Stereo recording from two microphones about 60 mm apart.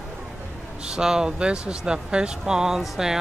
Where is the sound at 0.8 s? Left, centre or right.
Centre.